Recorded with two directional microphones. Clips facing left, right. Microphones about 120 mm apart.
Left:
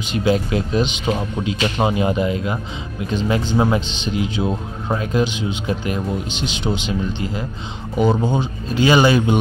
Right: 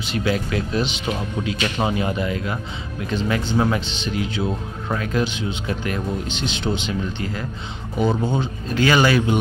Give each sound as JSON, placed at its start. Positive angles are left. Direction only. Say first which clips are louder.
{"t": 0.1, "sound": "speech", "louder": "left 4 dB", "side_deg": 25}